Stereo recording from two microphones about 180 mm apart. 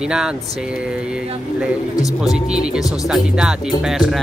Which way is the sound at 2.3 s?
5° right (ahead or behind).